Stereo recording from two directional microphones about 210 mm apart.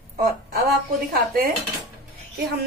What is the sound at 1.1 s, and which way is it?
Speech, 45° right (ahead or behind).